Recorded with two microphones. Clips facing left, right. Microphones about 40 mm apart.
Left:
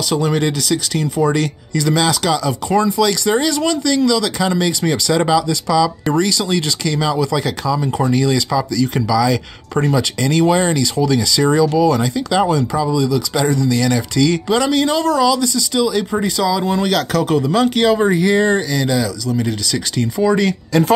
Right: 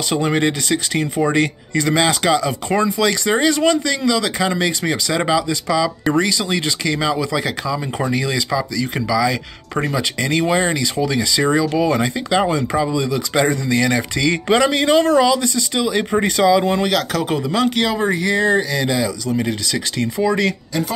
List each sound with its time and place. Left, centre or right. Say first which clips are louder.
0.1 s speech: even; right
16.8 s speech: left 2 dB; centre
18.5 s speech: left 1 dB; centre
20.2 s speech: left 3 dB; centre